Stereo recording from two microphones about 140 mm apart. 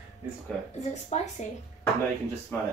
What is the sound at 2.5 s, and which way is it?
Speech, 15° left (ahead or behind).